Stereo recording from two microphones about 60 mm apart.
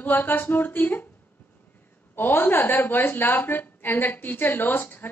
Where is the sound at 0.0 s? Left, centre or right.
Left.